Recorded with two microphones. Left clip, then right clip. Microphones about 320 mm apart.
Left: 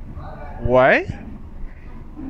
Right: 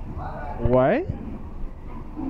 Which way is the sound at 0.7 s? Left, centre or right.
Left.